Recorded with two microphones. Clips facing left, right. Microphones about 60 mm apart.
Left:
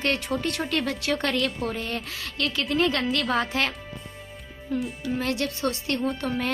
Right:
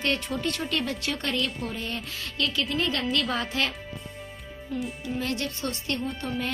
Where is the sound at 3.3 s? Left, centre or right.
Left.